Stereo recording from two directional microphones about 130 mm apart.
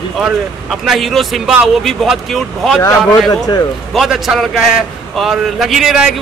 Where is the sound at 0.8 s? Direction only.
Centre (ahead or behind).